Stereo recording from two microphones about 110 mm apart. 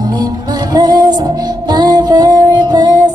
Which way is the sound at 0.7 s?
40° right (ahead or behind).